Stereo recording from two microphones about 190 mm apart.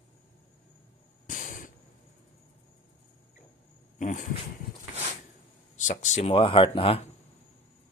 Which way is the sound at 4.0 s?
40° left (ahead or behind).